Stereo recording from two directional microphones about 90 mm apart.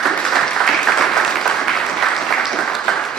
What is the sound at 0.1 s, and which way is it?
Applause, 5° left (ahead or behind).